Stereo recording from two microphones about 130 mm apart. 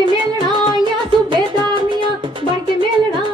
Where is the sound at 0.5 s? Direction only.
40° right (ahead or behind).